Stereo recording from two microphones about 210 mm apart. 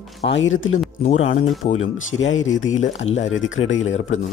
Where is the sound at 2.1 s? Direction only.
70° left (ahead or behind).